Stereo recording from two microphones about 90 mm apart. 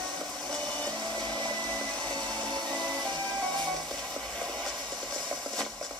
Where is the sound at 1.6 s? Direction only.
15° left (ahead or behind).